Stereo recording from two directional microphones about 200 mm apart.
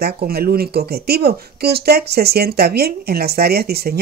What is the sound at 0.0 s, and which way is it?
Speech, 50° right (ahead or behind).